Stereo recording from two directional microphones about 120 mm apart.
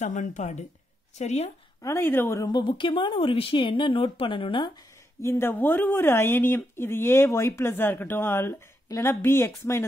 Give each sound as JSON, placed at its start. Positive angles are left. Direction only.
{"t": 0.0, "sound": "a woman's voice", "side_deg": 90}
{"t": 1.1, "sound": "a woman's voice", "side_deg": 65}
{"t": 1.8, "sound": "speech", "side_deg": 25}
{"t": 2.5, "sound": "speech", "side_deg": 45}
{"t": 5.2, "sound": "speech", "side_deg": 20}